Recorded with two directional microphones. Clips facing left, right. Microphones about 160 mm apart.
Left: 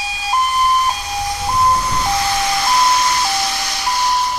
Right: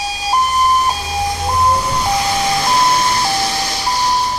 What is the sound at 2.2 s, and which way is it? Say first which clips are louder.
Vehicle: right 2 dB; 20° right (ahead or behind).